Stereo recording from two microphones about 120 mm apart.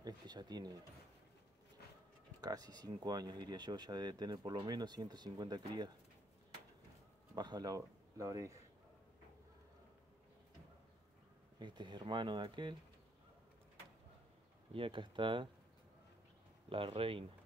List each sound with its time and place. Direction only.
0.0 s a sound: 35° right (ahead or behind)
2.4 s speech: 35° right (ahead or behind)
7.3 s speech: 35° right (ahead or behind)
11.6 s speech: 40° right (ahead or behind)
14.7 s speech: 45° right (ahead or behind)
16.6 s speech: 50° right (ahead or behind)